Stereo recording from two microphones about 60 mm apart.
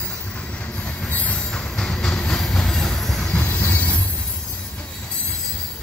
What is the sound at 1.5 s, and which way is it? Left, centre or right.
Train, centre.